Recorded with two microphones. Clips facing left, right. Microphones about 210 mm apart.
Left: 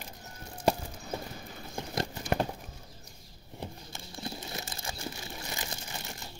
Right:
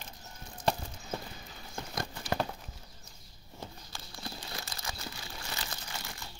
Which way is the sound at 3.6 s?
20° left (ahead or behind).